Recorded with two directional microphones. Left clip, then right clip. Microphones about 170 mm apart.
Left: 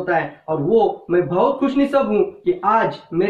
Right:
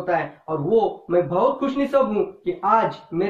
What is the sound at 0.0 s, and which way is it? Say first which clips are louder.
Speech: left 3 dB; 15° right (ahead or behind).